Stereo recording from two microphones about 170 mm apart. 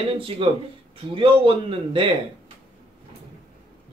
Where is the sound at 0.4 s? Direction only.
30° right (ahead or behind).